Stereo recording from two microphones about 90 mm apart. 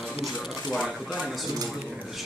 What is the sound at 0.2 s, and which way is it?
Speech, centre (ahead or behind).